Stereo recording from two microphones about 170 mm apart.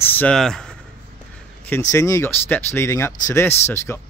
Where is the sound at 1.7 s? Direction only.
15° left (ahead or behind).